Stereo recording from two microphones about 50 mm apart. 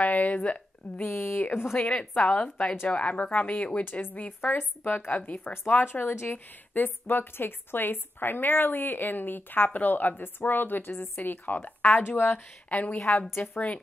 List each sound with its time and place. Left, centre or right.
0.0 s a woman's voice: left
1.0 s speech: left
1.9 s speech: left
4.4 s speech: left
5.1 s speech: left
6.3 s speech: left